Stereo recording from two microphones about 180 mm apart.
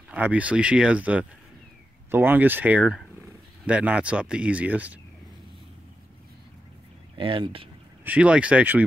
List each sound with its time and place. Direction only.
0.1 s speech: 10° right (ahead or behind)
7.2 s speech: 30° right (ahead or behind)
8.0 s speech: 5° right (ahead or behind)